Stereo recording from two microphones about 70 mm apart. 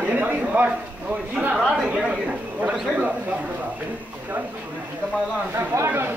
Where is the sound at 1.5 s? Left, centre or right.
Centre.